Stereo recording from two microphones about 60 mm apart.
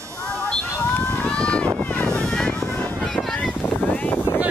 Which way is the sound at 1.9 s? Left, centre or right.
Left.